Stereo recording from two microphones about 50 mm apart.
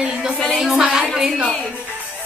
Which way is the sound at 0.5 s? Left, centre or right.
Centre.